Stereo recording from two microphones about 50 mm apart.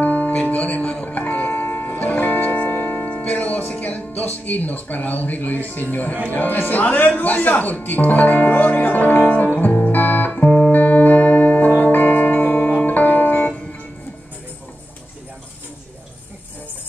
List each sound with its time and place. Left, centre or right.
0.0 s music: left
6.3 s speech: left
10.4 s music: left
10.7 s music: left